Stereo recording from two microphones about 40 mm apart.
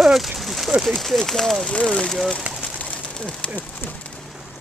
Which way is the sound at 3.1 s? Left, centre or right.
Left.